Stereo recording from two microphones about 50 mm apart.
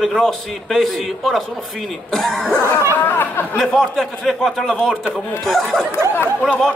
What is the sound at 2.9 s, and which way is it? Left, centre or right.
Speech, left.